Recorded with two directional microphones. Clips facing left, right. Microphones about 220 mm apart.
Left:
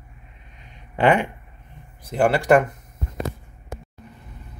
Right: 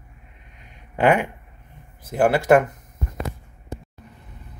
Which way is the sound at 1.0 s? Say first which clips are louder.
Even; 10° right (ahead or behind).